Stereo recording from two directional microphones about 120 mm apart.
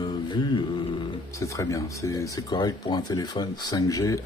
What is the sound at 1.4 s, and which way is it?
Speech, 25° left (ahead or behind).